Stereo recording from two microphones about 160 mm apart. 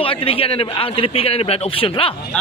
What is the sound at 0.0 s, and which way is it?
A man's voice, 35° left (ahead or behind).